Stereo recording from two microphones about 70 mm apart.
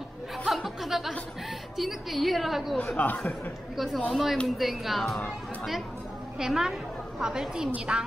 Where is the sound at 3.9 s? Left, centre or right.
Centre.